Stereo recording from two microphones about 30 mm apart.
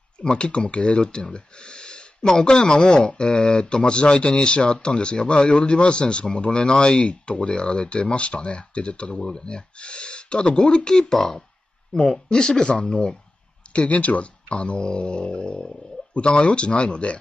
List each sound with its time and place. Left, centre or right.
0.2 s speech: left
7.0 s speech: left
10.9 s speech: left
13.7 s speech: left
16.3 s speech: left
16.6 s speech: left